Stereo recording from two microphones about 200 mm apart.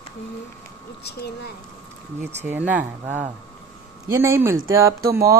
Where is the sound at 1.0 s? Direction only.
55° left (ahead or behind).